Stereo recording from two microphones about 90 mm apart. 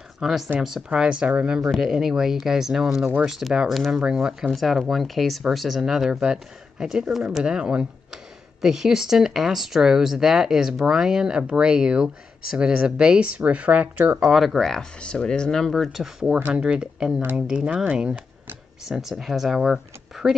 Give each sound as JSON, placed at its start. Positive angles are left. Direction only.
{"t": 0.2, "sound": "speech", "side_deg": -5}
{"t": 14.2, "sound": "speech", "side_deg": 0}
{"t": 16.3, "sound": "speech", "side_deg": -20}
{"t": 16.6, "sound": "speech", "side_deg": -10}